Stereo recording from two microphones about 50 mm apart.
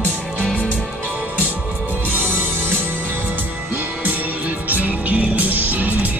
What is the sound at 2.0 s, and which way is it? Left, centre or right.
Music, right.